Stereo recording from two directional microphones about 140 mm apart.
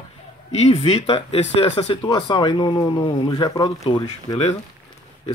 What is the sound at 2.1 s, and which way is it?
Speech, 30° left (ahead or behind).